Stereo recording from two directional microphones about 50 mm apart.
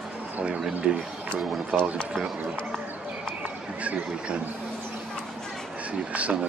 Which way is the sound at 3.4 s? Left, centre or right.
Right.